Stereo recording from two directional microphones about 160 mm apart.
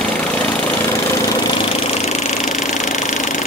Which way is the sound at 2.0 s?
45° left (ahead or behind).